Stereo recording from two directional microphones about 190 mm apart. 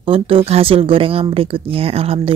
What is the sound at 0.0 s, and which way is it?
Speech, 30° right (ahead or behind).